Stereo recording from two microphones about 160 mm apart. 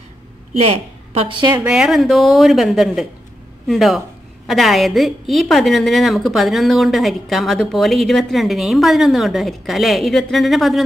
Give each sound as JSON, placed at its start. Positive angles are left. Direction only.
{"t": 0.6, "sound": "a woman's voice", "side_deg": -35}
{"t": 1.6, "sound": "a woman's voice", "side_deg": -5}